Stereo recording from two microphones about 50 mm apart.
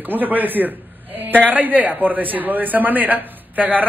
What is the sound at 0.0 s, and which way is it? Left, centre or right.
A man's voice, right.